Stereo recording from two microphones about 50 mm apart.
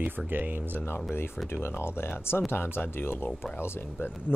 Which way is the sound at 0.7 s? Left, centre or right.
Left.